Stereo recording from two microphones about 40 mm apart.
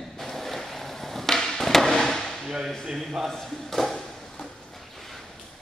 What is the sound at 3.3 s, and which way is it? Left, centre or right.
Speech, centre.